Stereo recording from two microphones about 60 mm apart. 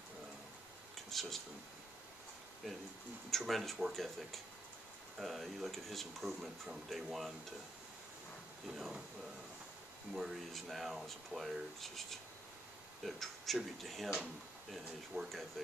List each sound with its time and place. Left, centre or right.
1.1 s a sound: centre
3.3 s speech: centre
8.7 s speech: centre
10.1 s speech: centre